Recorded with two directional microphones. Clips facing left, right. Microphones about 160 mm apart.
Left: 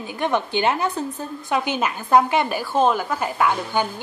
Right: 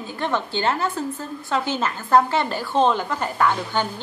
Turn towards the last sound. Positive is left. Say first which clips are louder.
# left 1 dB
turn(degrees=10)  # may be behind; listen again after turning